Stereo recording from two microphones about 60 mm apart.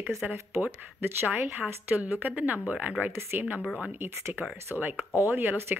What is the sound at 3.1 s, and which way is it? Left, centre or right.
Speech, right.